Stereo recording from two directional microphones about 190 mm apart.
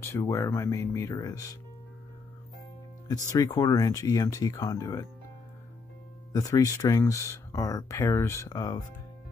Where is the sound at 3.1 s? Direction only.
20° left (ahead or behind).